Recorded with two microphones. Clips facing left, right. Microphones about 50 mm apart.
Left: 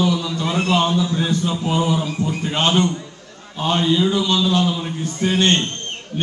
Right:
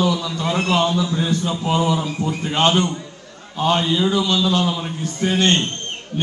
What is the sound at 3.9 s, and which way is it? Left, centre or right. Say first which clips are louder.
A man's voice: even; right.